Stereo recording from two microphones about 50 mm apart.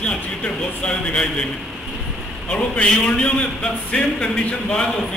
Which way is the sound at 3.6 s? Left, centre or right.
Centre.